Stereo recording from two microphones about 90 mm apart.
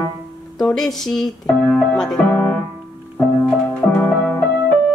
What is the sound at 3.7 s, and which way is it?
Music, 20° left (ahead or behind).